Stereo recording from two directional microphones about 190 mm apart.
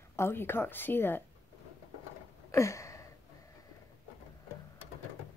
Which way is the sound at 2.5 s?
15° left (ahead or behind).